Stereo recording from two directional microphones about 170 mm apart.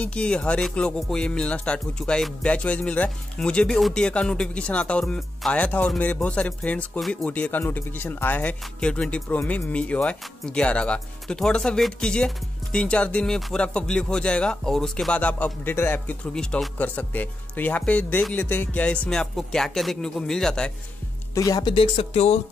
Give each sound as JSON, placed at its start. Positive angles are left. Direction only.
{"t": 0.0, "sound": "music", "side_deg": 5}
{"t": 12.7, "sound": "speech", "side_deg": 5}
{"t": 21.4, "sound": "speech", "side_deg": 20}